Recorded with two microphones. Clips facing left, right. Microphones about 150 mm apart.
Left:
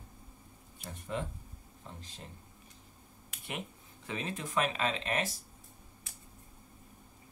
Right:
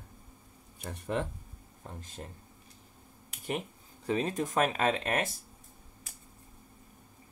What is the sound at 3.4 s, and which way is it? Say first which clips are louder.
Speech: right 6 dB; 35° right (ahead or behind).